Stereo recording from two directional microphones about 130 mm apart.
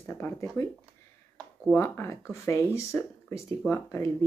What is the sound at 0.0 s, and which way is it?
Speech, 20° left (ahead or behind).